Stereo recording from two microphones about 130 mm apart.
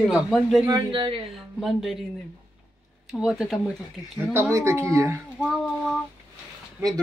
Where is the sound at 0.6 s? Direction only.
35° right (ahead or behind).